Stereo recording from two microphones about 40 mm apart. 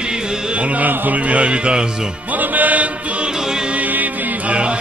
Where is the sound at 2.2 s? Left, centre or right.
Right.